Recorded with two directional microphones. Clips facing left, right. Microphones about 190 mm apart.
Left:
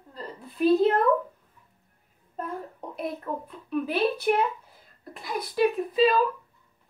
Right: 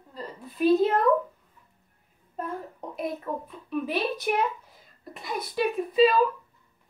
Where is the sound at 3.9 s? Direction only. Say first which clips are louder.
Left 6 dB; 60° left (ahead or behind).